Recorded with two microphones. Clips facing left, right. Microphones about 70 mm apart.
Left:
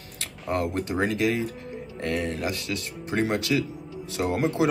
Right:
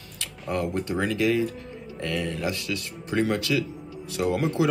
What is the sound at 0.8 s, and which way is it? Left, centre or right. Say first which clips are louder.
Speech: right 2 dB; left.